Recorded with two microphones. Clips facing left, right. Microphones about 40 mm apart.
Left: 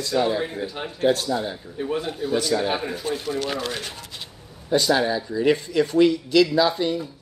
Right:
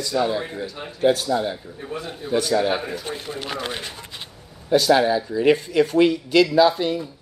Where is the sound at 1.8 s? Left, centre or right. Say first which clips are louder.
Left 10 dB; left.